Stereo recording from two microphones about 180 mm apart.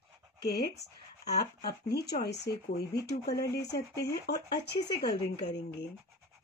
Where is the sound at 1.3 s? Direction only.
60° left (ahead or behind).